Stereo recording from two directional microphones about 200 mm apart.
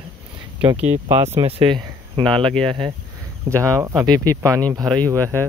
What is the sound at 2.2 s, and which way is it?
Speech, 5° left (ahead or behind).